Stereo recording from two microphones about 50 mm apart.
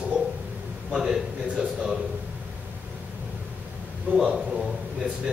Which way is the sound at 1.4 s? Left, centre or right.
Right.